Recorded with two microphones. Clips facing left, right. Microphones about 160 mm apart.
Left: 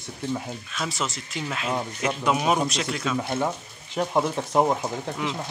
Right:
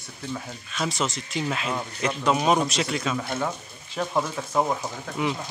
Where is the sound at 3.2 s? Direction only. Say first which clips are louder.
Left 2 dB; 15° left (ahead or behind).